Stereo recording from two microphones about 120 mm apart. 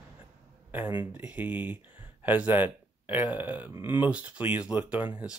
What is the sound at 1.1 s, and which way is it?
Speech, 15° right (ahead or behind).